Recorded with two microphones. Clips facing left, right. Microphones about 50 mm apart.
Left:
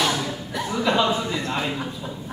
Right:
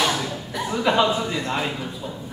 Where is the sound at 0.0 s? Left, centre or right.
Centre.